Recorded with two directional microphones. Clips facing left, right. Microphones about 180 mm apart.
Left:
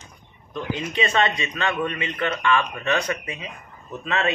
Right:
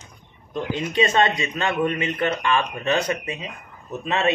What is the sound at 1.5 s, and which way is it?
Speech, 25° right (ahead or behind).